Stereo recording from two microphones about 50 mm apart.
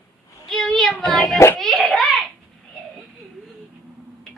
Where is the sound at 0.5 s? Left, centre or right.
Centre.